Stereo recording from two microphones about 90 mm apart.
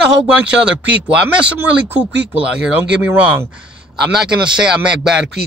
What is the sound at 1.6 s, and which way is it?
Speech, 25° right (ahead or behind).